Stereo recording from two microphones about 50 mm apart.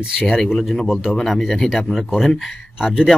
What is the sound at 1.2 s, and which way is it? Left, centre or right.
Speech, centre.